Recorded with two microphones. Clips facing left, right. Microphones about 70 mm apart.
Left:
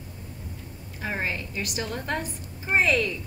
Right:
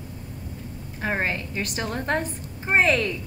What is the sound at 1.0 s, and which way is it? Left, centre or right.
A woman's voice, right.